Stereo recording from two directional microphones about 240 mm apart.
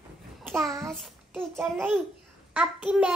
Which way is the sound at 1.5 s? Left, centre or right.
Centre.